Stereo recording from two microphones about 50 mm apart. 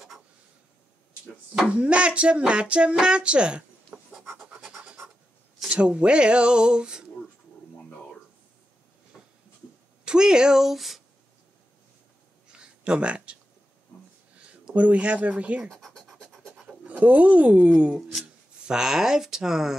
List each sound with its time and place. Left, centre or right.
1.7 s speech: right
5.7 s speech: right
9.1 s a sound: centre
10.0 s speech: centre
12.5 s a sound: centre
14.7 s speech: right
16.1 s scratch: centre
16.8 s speech: right; by 19.7 s centre